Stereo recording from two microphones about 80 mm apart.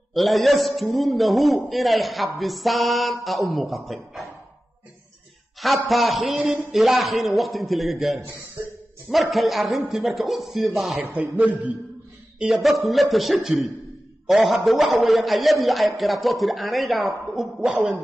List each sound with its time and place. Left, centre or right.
0.1 s a man's voice: centre
5.6 s a man's voice: centre
11.0 s music: centre
12.4 s a man's voice: centre
17.6 s music: centre